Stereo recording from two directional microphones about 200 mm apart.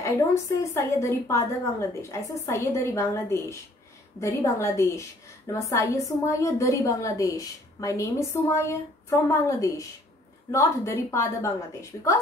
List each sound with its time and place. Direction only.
0.6 s a woman's voice: 15° left (ahead or behind)